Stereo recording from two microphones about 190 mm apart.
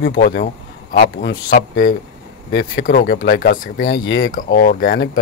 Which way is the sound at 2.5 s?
80° left.